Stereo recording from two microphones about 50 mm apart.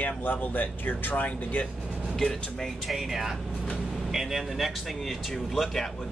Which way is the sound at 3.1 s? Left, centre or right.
Centre.